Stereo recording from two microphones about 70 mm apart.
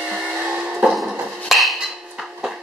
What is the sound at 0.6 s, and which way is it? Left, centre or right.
Music, centre.